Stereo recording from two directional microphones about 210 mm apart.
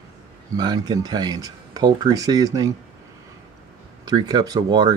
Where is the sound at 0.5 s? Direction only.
20° right (ahead or behind).